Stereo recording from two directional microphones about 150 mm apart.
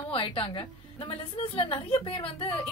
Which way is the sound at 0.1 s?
35° left (ahead or behind).